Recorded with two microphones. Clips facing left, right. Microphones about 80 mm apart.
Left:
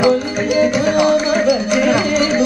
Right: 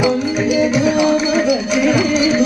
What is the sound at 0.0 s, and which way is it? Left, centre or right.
Music, left.